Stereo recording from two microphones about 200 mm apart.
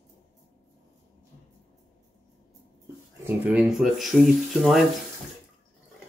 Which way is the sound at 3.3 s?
5° right (ahead or behind).